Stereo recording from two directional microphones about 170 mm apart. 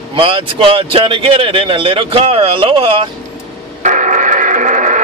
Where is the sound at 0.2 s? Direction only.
35° right (ahead or behind).